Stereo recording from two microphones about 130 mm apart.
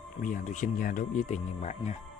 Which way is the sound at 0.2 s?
80° left.